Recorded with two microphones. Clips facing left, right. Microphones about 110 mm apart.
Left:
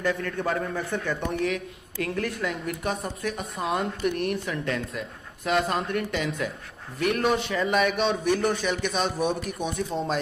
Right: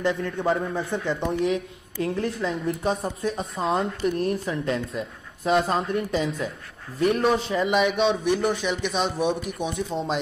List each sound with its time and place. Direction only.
0.0 s a woman's voice: 20° right (ahead or behind)
1.4 s a woman's voice: 25° right (ahead or behind)
7.6 s a man's voice: centre (ahead or behind)